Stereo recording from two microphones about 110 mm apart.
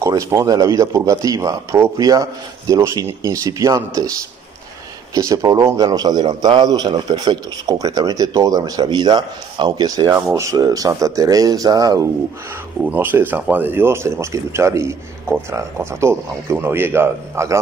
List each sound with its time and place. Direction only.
0.0 s a man's voice: 30° right (ahead or behind)
12.8 s speech: 15° right (ahead or behind)